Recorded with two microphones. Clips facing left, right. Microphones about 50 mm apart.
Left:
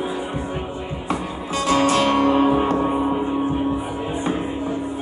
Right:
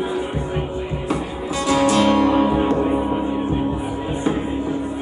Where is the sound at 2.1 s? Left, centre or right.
Left.